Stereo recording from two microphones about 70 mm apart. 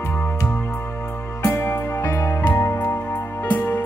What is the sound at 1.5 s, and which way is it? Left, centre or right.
Music, left.